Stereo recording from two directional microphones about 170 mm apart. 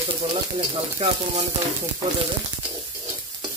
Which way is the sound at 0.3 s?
35° right (ahead or behind).